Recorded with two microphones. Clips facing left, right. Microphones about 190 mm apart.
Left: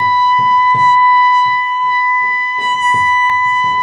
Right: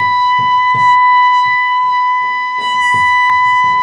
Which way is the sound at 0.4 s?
30° right (ahead or behind).